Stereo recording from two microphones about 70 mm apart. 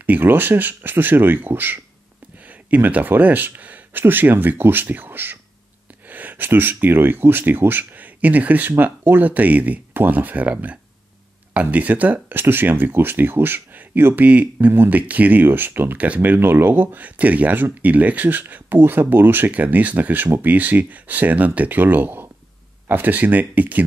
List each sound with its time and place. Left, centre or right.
0.0 s speech: right
2.4 s a sound: right
4.0 s speech: right